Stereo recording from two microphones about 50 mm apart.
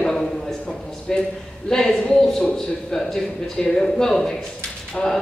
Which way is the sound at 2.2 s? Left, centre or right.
Centre.